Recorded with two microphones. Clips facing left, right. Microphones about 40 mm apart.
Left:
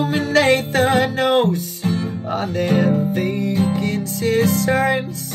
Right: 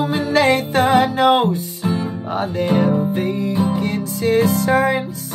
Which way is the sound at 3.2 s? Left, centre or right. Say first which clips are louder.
Even; left.